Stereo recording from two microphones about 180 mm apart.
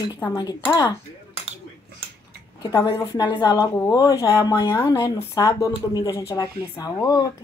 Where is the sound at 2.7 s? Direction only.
15° left (ahead or behind).